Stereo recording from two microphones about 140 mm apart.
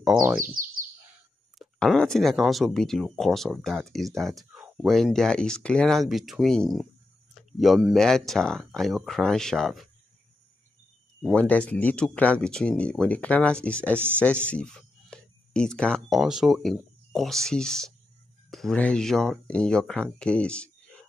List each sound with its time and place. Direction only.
0.4 s bird: 80° right
1.6 s speech: centre (ahead or behind)
11.2 s speech: 10° left (ahead or behind)